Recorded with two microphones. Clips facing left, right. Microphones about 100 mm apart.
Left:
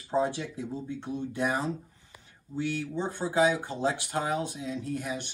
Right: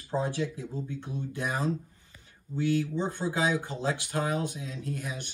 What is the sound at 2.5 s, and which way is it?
Speech, 15° left (ahead or behind).